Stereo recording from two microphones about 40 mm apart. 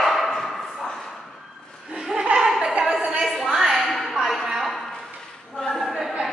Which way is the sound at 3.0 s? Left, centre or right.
Centre.